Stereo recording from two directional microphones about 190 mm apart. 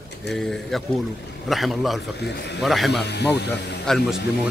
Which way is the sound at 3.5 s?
5° left (ahead or behind).